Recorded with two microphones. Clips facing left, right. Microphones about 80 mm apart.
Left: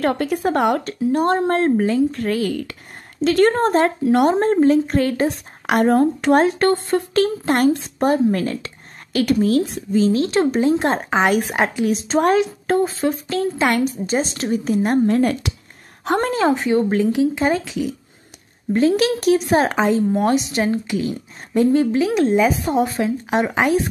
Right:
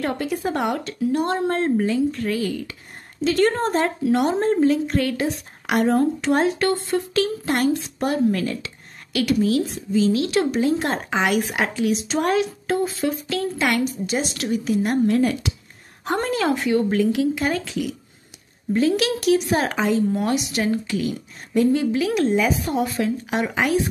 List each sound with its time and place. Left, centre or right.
0.0 s speech: left
5.7 s speech: left
16.3 s speech: left